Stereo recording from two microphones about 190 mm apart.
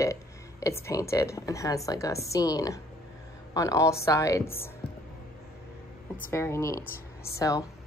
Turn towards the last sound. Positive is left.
turn(degrees=15)  # may be behind; listen again after turning